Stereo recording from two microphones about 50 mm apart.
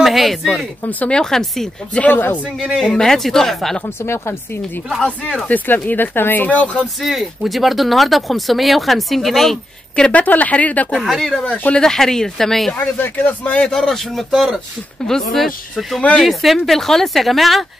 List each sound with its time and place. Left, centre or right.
0.0 s speech: centre
0.8 s speech: left
1.1 s speech: centre
2.1 s speech: left
2.8 s speech: centre
3.8 s speech: left
5.5 s speech: left
7.0 s speech: centre
10.1 s speech: left
11.0 s speech: centre
11.4 s speech: left
11.7 s speech: centre
12.7 s speech: left
13.7 s speech: centre